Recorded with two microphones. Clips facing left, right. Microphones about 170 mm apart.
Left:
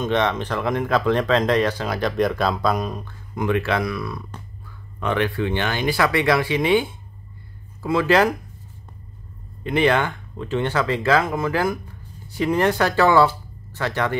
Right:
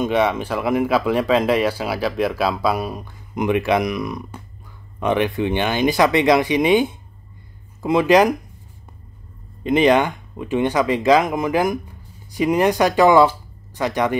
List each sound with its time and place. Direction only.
0.0 s speech: 10° right (ahead or behind)
9.6 s speech: 20° right (ahead or behind)